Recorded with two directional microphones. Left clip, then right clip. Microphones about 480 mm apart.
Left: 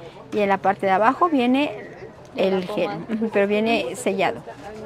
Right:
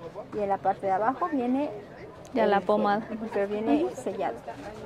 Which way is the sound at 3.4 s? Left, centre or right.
Left.